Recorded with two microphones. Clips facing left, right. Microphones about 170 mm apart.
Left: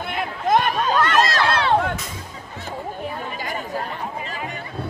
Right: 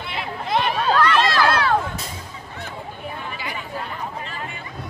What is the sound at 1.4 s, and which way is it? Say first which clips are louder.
Crowd: even; 25° left (ahead or behind).